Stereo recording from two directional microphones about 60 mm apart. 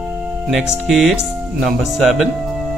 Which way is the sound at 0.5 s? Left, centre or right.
Centre.